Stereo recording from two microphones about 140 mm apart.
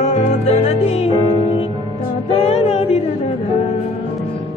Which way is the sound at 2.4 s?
50° left (ahead or behind).